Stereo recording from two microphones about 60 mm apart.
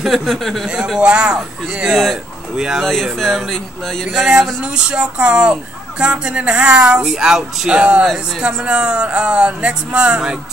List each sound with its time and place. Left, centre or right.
0.0 s speech: centre
1.0 s speech: centre
1.9 s speech: centre
2.5 s speech: centre
2.8 s speech: centre
4.0 s speech: centre